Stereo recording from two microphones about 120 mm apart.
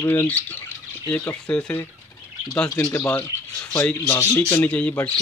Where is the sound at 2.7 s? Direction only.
25° left (ahead or behind).